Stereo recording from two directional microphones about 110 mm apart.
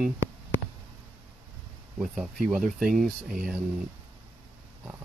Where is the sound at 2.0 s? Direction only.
Centre (ahead or behind).